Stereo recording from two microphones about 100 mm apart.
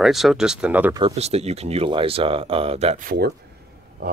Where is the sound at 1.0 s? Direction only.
90° right.